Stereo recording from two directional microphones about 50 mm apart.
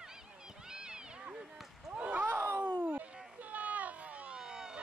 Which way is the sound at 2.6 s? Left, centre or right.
Right.